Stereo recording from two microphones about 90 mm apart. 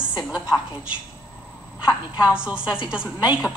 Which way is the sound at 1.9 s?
10° right (ahead or behind).